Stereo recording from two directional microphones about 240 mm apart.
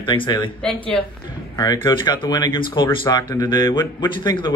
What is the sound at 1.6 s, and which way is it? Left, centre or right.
Speech, centre.